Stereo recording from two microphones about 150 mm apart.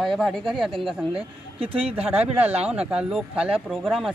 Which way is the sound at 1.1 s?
40° right (ahead or behind).